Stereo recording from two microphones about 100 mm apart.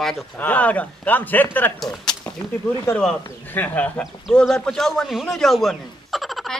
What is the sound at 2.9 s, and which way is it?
Speech, 30° left (ahead or behind).